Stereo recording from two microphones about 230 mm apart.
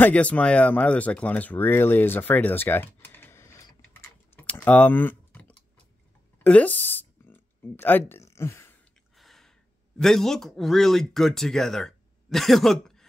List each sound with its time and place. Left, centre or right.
0.0 s speech: centre
6.4 s a sound: centre
9.9 s speech: centre